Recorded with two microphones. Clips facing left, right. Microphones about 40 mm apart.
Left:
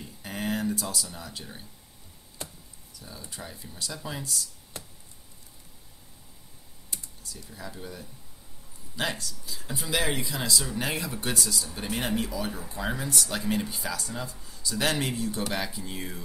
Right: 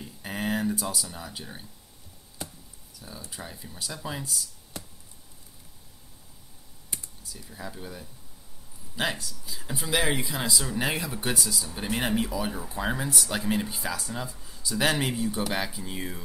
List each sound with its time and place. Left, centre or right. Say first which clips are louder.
0.0 s speech: right 2 dB; centre
2.4 s a sound: right 2 dB; centre
3.3 s speech: even; centre
6.9 s computer keyboard: right 1 dB; right
7.2 s speech: right 1 dB; centre